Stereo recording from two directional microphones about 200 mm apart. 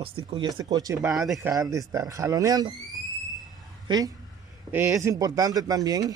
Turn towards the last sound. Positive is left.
turn(degrees=-20)  # may be behind; listen again after turning